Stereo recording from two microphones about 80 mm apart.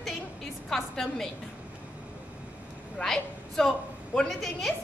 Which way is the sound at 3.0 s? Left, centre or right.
Centre.